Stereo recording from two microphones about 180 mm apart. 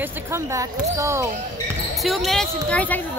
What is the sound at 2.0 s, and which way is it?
Speech, centre (ahead or behind).